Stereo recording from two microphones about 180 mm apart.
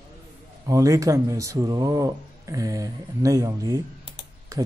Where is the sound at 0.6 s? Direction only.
20° right (ahead or behind).